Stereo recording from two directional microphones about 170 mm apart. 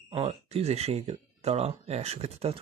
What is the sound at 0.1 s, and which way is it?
Speech, 35° right (ahead or behind).